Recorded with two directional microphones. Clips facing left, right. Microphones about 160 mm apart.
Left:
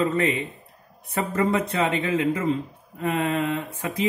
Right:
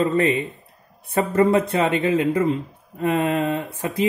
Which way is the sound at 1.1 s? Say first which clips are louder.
Right 6 dB; 30° right (ahead or behind).